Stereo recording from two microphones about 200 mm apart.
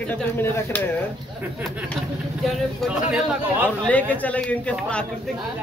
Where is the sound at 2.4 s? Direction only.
Centre (ahead or behind).